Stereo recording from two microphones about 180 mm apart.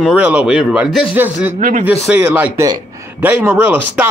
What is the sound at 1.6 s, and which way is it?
Speech, 50° right (ahead or behind).